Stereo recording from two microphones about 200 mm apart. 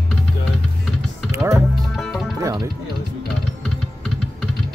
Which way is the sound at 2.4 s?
15° right (ahead or behind).